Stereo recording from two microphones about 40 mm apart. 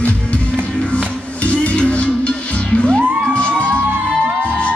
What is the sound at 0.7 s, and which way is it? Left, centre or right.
Music, left.